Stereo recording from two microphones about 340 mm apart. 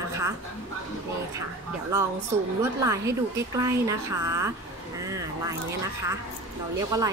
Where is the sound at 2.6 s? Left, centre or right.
Centre.